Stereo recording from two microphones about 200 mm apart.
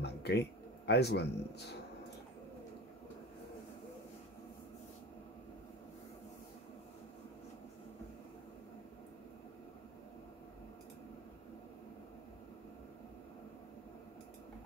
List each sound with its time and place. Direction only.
0.0 s speech: 55° left (ahead or behind)